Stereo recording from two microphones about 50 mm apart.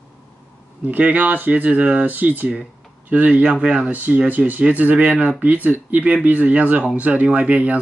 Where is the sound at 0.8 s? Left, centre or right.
Right.